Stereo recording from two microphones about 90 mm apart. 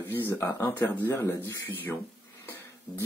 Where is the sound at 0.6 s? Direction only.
20° left (ahead or behind).